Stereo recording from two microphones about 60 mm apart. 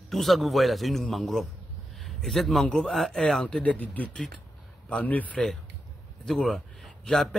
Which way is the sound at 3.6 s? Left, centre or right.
Left.